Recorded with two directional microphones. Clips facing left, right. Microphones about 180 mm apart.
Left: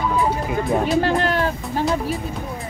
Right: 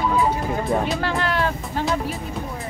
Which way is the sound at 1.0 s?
45° left (ahead or behind).